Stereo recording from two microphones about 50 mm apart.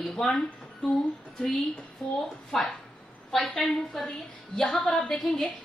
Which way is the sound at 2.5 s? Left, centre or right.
Centre.